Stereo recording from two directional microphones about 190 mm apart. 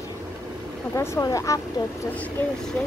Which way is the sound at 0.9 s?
15° left (ahead or behind).